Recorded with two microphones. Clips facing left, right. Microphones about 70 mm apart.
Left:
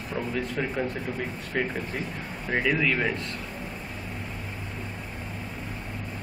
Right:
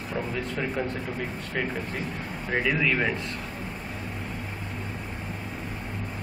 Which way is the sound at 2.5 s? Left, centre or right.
Centre.